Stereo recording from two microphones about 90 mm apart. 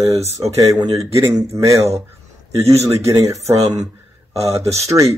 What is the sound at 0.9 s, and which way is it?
Speech, 35° right (ahead or behind).